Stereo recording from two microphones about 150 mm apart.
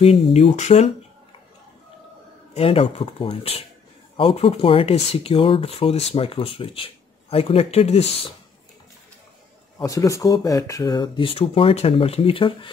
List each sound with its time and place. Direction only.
0.0 s speech: 40° left (ahead or behind)
2.5 s speech: 40° left (ahead or behind)
9.8 s speech: 20° left (ahead or behind)